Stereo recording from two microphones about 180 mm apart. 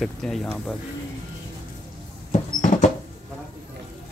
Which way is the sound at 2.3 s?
40° left (ahead or behind).